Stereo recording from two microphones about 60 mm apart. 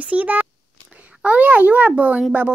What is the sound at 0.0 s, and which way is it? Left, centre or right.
A child's voice, right.